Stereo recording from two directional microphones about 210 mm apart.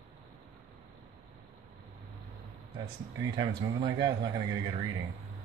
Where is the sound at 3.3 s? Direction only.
20° right (ahead or behind).